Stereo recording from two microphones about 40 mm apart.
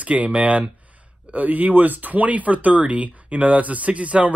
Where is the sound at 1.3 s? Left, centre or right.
Right.